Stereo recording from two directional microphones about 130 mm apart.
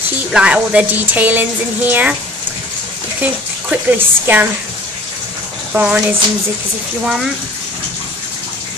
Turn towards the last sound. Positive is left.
turn(degrees=0)  # may be behind; listen again after turning